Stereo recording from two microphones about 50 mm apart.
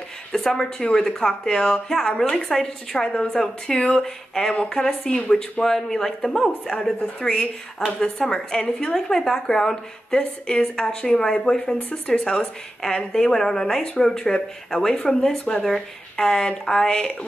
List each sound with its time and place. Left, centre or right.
0.3 s a woman's voice: centre